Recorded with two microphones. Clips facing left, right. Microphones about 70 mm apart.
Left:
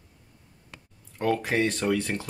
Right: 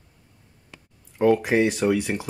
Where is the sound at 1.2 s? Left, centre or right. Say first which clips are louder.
Right 6 dB; centre.